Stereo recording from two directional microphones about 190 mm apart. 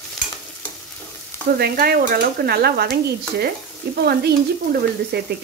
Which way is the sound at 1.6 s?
55° right (ahead or behind).